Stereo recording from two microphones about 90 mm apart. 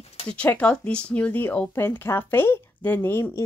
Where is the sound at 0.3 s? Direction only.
15° left (ahead or behind).